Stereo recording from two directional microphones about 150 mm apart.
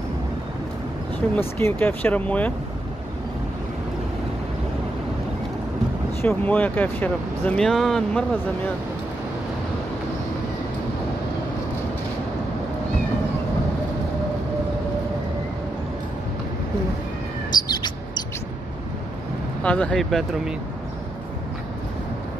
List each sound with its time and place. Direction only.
1.3 s speech: 15° left (ahead or behind)
6.2 s speech: 10° left (ahead or behind)
17.6 s bird: 30° left (ahead or behind)
19.6 s speech: 10° left (ahead or behind)